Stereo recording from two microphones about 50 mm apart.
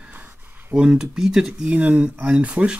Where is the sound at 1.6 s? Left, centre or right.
Right.